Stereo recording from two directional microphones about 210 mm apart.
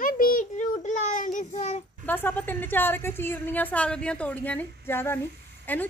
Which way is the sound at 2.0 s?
10° left (ahead or behind).